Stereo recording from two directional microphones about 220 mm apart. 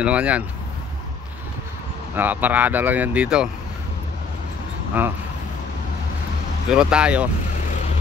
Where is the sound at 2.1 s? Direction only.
10° right (ahead or behind).